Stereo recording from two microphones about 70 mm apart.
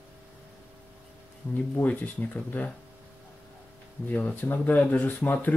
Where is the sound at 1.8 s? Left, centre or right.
Left.